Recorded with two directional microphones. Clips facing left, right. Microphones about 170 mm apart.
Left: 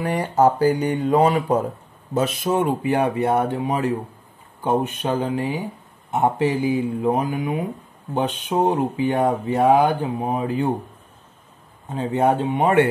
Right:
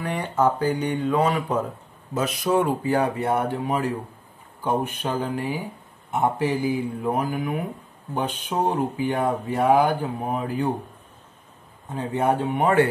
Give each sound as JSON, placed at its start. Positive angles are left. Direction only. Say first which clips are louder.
{"t": 0.0, "sound": "speech", "louder": "left 4 dB", "side_deg": 40}
{"t": 2.1, "sound": "speech", "louder": "left 1 dB", "side_deg": 25}
{"t": 11.9, "sound": "speech", "louder": "left 3 dB", "side_deg": 15}